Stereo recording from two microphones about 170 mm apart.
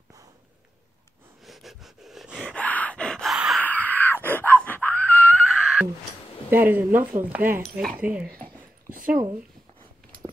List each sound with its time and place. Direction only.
1.4 s a sound: centre (ahead or behind)
2.5 s gasp: 10° left (ahead or behind)
3.6 s wail: 10° left (ahead or behind)
6.5 s speech: 10° right (ahead or behind)
7.6 s speech: centre (ahead or behind)
8.9 s a sound: 55° right (ahead or behind)